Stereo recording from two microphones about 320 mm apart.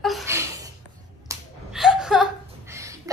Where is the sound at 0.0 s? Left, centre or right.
Centre.